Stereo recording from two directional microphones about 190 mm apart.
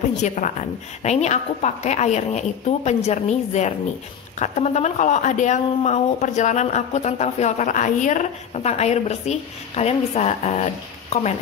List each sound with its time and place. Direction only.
0.2 s speech: 40° left (ahead or behind)